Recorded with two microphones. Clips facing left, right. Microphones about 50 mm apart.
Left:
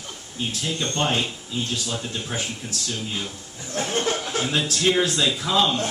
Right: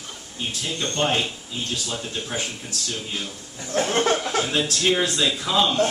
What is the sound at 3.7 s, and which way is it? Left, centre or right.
Speech, right.